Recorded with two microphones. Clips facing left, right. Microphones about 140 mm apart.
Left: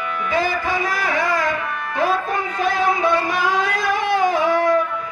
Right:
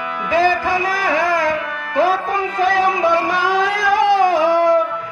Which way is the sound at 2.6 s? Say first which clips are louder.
Right 3 dB; 90° right.